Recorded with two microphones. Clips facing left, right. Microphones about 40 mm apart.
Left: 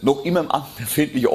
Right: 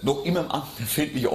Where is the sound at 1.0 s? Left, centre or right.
Left.